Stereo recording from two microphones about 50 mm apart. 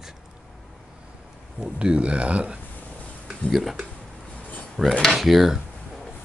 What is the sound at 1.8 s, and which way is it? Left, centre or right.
Speech, right.